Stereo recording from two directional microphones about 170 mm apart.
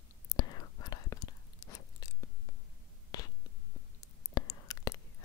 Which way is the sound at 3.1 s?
20° left (ahead or behind).